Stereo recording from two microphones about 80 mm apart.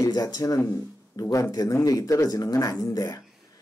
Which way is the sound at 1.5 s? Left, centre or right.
Left.